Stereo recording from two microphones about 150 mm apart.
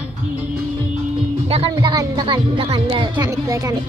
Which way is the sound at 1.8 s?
30° right (ahead or behind).